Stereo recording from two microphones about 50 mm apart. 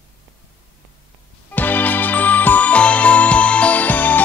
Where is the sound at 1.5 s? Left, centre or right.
Left.